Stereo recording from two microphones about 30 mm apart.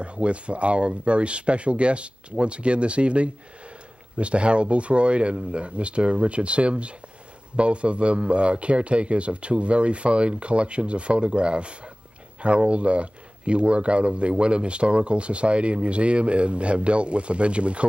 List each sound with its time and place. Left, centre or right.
0.0 s speech: right